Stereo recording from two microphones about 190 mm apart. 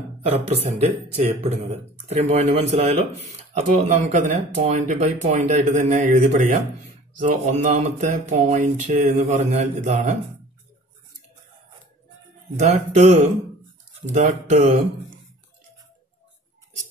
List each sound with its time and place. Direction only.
0.2 s speech: 35° right (ahead or behind)
12.5 s speech: 35° right (ahead or behind)